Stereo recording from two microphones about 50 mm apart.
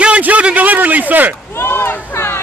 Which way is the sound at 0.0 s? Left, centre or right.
Right.